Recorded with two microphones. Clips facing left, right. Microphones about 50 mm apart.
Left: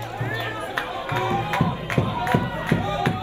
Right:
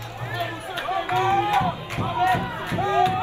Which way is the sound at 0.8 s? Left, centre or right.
Right.